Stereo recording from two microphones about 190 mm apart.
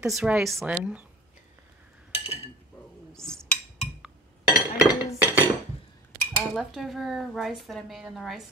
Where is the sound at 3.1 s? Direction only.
5° left (ahead or behind).